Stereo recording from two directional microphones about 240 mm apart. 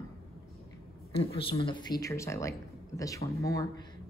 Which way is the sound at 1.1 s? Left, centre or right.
Left.